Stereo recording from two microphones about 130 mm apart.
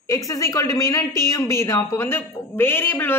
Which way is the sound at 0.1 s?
25° left (ahead or behind).